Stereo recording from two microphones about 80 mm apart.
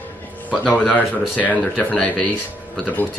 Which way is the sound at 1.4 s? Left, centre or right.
Centre.